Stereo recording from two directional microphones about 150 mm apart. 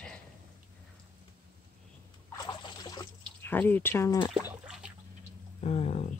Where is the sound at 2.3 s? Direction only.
30° left (ahead or behind).